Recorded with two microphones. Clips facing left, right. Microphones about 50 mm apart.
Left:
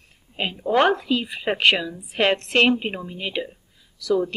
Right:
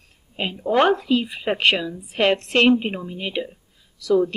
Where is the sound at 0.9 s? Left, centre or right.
Left.